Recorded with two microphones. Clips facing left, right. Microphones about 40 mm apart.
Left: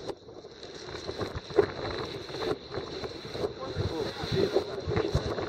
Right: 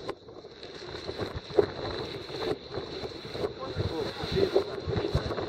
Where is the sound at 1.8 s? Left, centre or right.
Centre.